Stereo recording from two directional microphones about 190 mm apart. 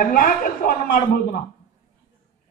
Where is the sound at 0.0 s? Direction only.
45° left (ahead or behind).